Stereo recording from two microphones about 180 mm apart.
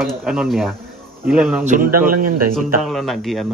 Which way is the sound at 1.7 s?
50° right (ahead or behind).